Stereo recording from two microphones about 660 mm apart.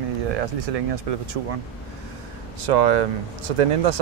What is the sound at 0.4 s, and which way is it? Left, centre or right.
Speech, right.